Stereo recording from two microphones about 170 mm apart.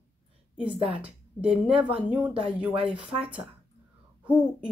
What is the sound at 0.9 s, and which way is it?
Speech, 35° right (ahead or behind).